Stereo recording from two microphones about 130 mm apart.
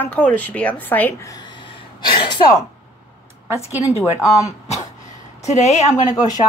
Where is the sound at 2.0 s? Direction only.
35° left (ahead or behind).